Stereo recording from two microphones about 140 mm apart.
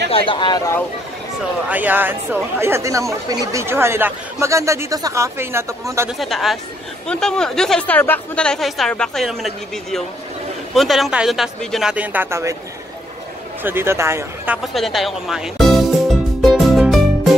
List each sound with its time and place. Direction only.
0.1 s speech: 35° left (ahead or behind)
1.7 s speech: 10° right (ahead or behind)
6.0 s a woman's voice: centre (ahead or behind); by 12.5 s 20° right (ahead or behind)
13.6 s speech: 15° right (ahead or behind)
14.6 s a woman's voice: centre (ahead or behind)
16.3 s music: centre (ahead or behind)